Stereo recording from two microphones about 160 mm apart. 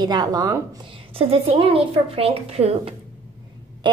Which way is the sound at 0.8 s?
35° right (ahead or behind).